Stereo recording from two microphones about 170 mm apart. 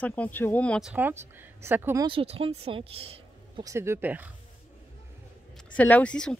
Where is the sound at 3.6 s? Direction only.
15° right (ahead or behind).